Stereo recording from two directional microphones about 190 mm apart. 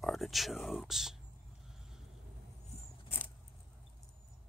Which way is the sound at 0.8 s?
Centre (ahead or behind).